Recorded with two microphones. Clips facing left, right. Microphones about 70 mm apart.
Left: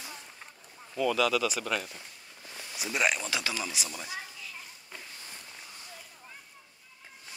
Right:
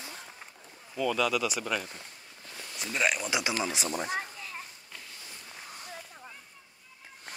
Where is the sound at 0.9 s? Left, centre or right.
Centre.